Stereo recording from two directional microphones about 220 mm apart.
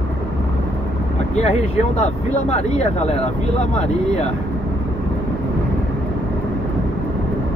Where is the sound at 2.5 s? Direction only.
30° left (ahead or behind).